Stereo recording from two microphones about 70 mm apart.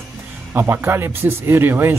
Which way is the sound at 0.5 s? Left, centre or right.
Right.